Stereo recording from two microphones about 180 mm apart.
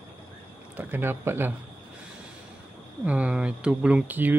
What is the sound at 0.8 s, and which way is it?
Speech, 10° right (ahead or behind).